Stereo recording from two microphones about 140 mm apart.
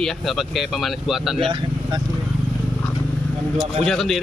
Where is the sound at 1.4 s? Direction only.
40° right (ahead or behind).